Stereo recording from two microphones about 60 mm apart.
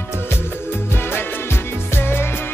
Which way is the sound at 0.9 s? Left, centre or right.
Left.